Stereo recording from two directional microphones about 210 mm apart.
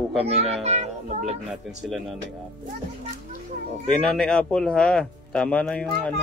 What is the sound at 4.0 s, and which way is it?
A man's voice, centre (ahead or behind).